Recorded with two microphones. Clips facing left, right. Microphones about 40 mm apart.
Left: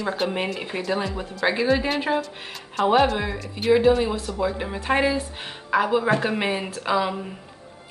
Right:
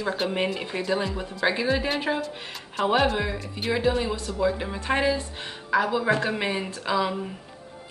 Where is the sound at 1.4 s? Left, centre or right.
Centre.